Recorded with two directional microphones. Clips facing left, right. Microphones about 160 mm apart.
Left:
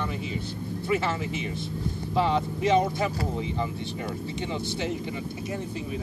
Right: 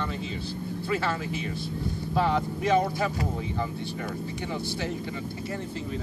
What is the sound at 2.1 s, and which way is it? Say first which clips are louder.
Speech: left 1 dB; 20° left (ahead or behind).